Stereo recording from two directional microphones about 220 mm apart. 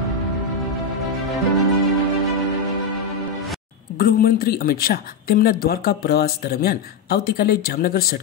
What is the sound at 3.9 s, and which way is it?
Speech, 40° left (ahead or behind).